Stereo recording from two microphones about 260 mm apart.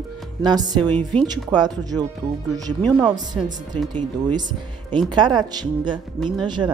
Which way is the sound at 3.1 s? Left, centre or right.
Centre.